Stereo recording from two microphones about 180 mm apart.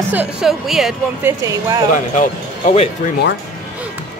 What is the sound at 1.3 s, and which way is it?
Speech, 20° right (ahead or behind).